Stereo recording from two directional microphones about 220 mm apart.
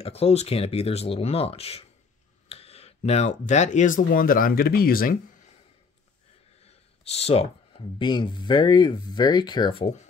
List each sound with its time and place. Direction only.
0.0 s speech: 30° left (ahead or behind)
6.6 s speech: 25° left (ahead or behind)